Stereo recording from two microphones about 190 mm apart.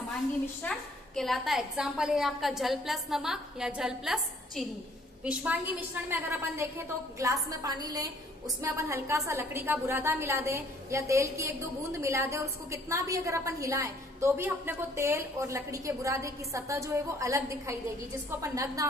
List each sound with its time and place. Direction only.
0.6 s a woman's voice: 5° left (ahead or behind); by 18.9 s 15° right (ahead or behind)